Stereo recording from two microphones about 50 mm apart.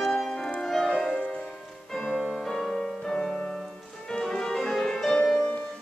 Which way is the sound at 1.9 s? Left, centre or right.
Centre.